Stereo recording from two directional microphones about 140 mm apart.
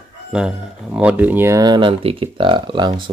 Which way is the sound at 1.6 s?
35° right (ahead or behind).